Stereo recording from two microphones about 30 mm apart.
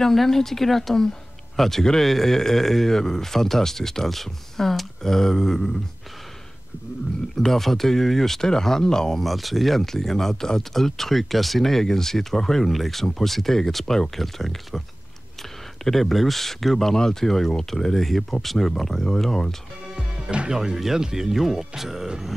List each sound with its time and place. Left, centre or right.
0.0 s speech: centre
7.3 s speech: centre
8.4 s speech: centre
9.2 s speech: centre
12.6 s speech: centre
15.8 s speech: centre
20.0 s music: right
20.7 s speech: centre